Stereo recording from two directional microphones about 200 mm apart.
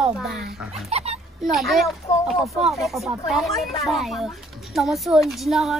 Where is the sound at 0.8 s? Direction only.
30° right (ahead or behind).